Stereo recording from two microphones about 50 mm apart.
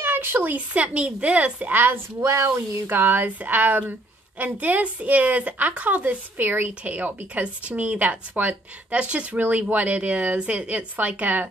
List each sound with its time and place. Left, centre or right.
0.0 s speech: right
0.7 s a woman's voice: right
1.7 s speech: right
2.1 s speech: right
2.9 s a woman's voice: right